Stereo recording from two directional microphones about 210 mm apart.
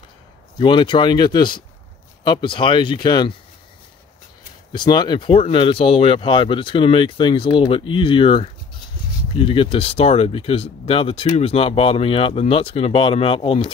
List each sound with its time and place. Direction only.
0.6 s speech: 25° left (ahead or behind)
4.7 s speech: 20° left (ahead or behind)